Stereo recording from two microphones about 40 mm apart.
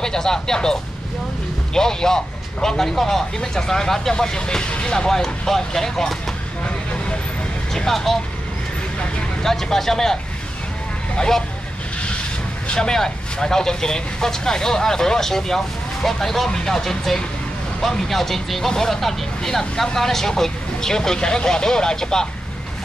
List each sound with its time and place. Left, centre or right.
0.0 s speech: centre
7.7 s speech: centre
9.4 s speech: centre
11.1 s speech: centre
12.7 s speech: centre